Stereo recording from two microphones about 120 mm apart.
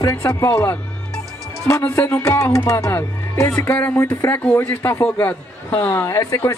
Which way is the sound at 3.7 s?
15° left (ahead or behind).